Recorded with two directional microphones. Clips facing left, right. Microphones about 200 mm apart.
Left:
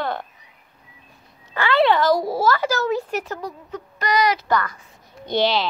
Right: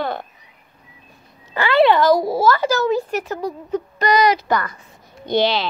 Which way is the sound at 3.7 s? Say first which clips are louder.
Right 4 dB; 25° right (ahead or behind).